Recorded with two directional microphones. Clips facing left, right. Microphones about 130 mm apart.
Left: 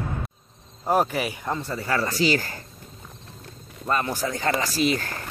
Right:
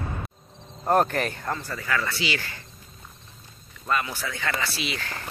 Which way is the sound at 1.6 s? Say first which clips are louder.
Left 5 dB; 30° left (ahead or behind).